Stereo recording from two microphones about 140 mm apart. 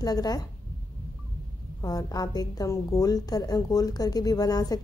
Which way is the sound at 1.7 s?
25° left (ahead or behind).